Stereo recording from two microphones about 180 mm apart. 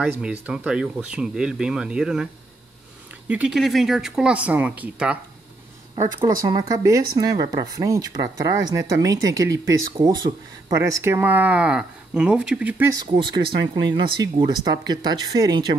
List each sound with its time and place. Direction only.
0.0 s speech: 5° right (ahead or behind)
3.3 s speech: 5° right (ahead or behind)
6.4 s speech: 20° right (ahead or behind)
12.9 s speech: 25° right (ahead or behind)